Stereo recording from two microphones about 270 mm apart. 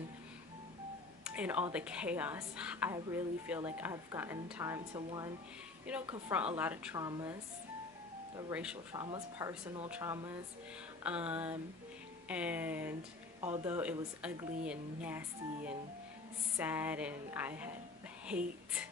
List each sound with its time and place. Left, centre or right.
1.2 s a sound: centre
1.7 s a woman's voice: centre
6.3 s a woman's voice: centre
8.4 s a woman's voice: centre